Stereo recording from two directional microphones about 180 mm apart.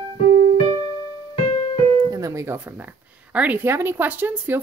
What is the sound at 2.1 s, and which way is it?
Speech, 15° right (ahead or behind).